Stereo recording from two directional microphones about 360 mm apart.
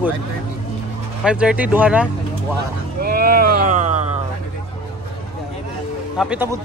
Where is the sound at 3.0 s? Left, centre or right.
Right.